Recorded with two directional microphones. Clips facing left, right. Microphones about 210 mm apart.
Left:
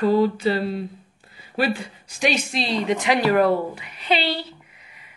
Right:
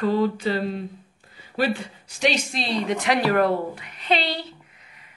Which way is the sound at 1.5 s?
10° left (ahead or behind).